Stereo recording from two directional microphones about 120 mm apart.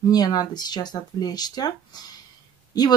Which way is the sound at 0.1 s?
35° left (ahead or behind).